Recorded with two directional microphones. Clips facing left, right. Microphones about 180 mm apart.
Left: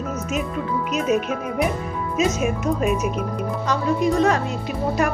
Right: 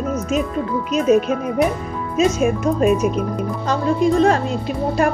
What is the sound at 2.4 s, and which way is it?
A woman's voice, 30° right (ahead or behind).